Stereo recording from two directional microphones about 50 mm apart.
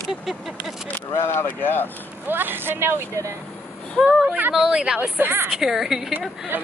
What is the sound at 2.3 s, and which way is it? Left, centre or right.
Speech, right.